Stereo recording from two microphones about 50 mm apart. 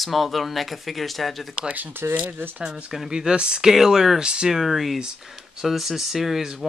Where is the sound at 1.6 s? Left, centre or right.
Right.